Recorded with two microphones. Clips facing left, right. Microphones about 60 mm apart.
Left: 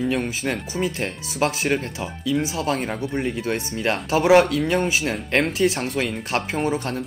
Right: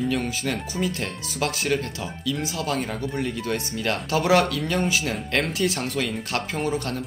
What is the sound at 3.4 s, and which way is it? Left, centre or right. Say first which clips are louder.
Speech: left 2 dB; left.